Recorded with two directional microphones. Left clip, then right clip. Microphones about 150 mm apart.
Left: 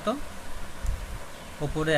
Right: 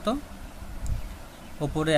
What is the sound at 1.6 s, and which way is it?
Speech, 35° right (ahead or behind).